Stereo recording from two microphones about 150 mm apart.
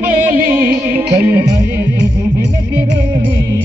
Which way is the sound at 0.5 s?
15° right (ahead or behind).